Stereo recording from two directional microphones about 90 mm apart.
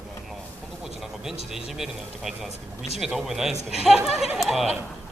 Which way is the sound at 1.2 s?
5° right (ahead or behind).